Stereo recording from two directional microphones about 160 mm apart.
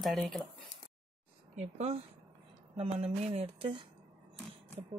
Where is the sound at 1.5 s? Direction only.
45° right (ahead or behind).